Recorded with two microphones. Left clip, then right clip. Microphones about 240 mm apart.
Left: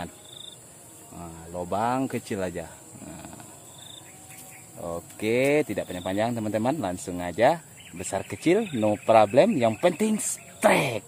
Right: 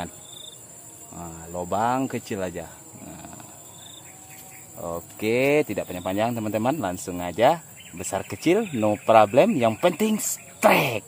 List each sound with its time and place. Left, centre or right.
1.1 s speech: right; by 3.3 s centre
4.7 s speech: centre